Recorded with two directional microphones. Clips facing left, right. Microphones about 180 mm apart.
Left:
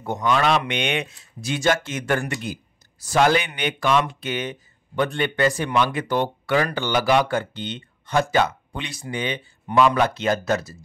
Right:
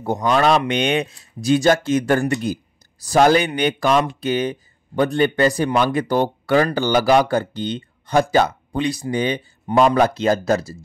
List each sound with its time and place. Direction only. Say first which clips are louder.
0.0 s speech: right 4 dB; 35° right (ahead or behind)